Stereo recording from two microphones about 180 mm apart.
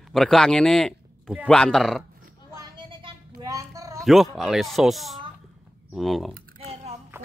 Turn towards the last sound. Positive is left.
turn(degrees=-35)  # may be behind; listen again after turning